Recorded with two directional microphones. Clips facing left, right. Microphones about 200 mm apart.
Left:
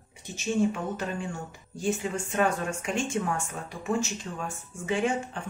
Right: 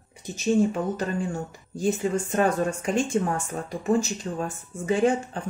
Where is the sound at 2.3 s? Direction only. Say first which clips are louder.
Right 2 dB; 40° right (ahead or behind).